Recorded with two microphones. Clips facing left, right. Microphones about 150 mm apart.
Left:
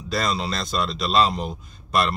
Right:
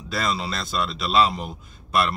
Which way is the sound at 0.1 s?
5° right (ahead or behind).